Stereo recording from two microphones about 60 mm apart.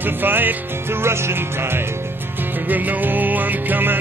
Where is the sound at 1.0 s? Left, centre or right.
Right.